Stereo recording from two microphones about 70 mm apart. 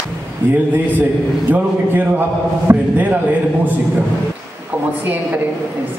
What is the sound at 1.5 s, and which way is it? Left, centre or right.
A man's voice, right.